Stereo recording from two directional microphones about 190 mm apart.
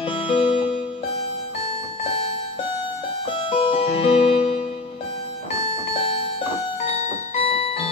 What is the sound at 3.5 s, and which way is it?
Music, 30° left (ahead or behind).